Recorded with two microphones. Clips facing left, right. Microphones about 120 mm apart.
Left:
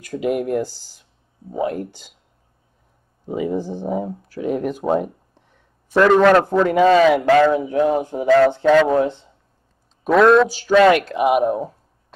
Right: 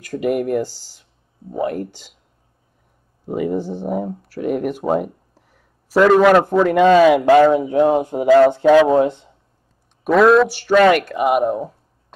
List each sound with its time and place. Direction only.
0.1 s speech: centre (ahead or behind)
3.4 s speech: centre (ahead or behind)
7.2 s speech: 15° right (ahead or behind)
10.0 s speech: centre (ahead or behind)